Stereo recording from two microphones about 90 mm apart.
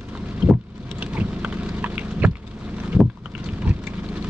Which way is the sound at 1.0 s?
15° right (ahead or behind).